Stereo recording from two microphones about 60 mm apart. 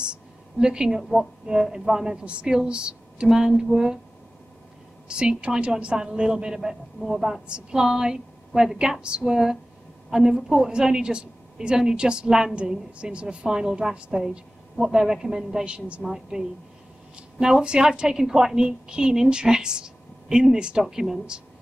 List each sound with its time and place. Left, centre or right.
0.0 s a sound: centre
1.4 s a woman's voice: centre
5.0 s a woman's voice: centre